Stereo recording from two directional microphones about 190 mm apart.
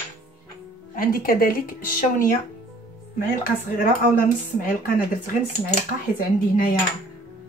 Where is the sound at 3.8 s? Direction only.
45° left (ahead or behind).